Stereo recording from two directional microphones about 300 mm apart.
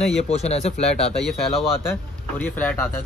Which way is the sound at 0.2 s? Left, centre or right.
Left.